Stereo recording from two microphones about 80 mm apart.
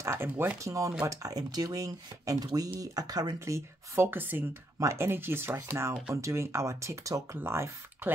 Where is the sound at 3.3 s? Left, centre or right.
Right.